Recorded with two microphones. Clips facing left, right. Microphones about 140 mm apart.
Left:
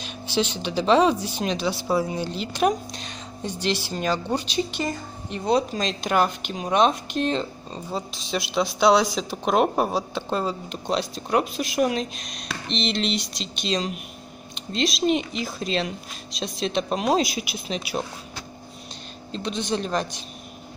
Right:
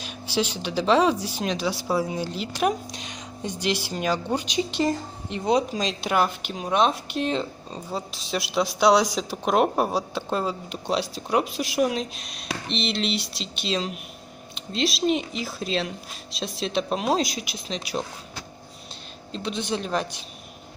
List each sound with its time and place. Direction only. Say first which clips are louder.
0.0 s speech: left 1 dB; 10° right (ahead or behind)
4.6 s a woman's voice: right 4 dB; 30° right (ahead or behind)
5.5 s speech: even; 10° right (ahead or behind); by 18.0 s 10° left (ahead or behind)
19.3 s speech: left 2 dB; 5° right (ahead or behind)